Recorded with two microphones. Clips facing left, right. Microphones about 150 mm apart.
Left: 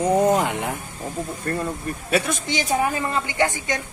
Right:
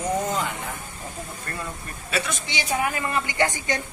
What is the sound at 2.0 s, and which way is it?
A woman's voice, 50° left (ahead or behind).